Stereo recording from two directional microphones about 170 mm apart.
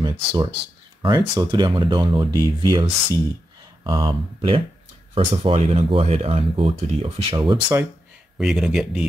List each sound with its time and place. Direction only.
0.0 s speech: 30° right (ahead or behind)
8.4 s speech: centre (ahead or behind)